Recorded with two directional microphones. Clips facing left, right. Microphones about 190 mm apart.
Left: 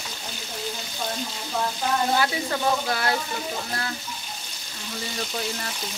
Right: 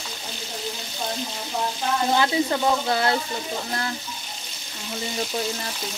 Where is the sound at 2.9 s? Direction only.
25° right (ahead or behind).